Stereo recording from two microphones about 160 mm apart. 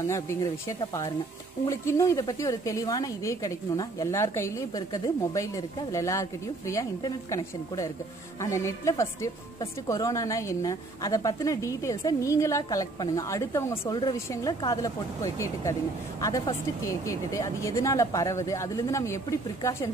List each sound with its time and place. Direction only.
0.0 s a woman's voice: 20° left (ahead or behind)